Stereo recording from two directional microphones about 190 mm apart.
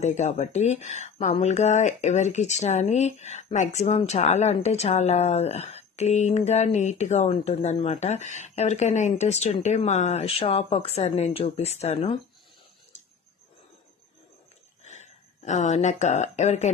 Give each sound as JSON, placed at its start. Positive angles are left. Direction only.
{"t": 0.0, "sound": "speech", "side_deg": 40}
{"t": 14.8, "sound": "speech", "side_deg": 35}